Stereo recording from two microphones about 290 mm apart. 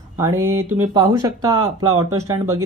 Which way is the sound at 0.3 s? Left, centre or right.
Right.